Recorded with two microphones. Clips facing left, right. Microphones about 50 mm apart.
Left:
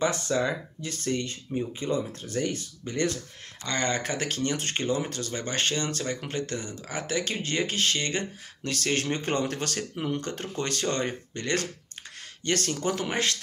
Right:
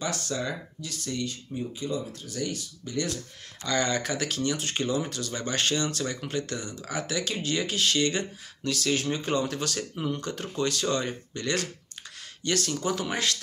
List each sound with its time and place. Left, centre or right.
0.0 s speech: left
1.0 s speech: left